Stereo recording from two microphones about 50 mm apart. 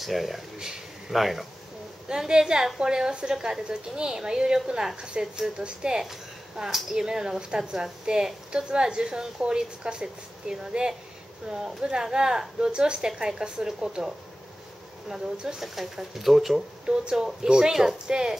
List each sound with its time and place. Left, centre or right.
0.0 s speech: centre
2.0 s a woman's voice: centre
16.8 s a woman's voice: centre